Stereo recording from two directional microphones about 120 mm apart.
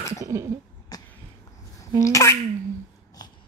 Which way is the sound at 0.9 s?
30° left (ahead or behind).